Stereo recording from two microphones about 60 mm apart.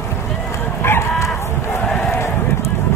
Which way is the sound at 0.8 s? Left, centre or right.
Left.